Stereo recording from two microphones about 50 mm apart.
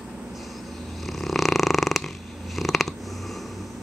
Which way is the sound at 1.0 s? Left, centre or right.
Centre.